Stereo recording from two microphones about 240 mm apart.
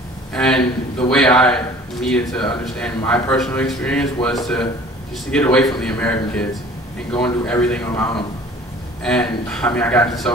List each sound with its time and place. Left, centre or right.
0.3 s speech: centre
0.6 s a man's voice: left
1.1 s a man's voice: centre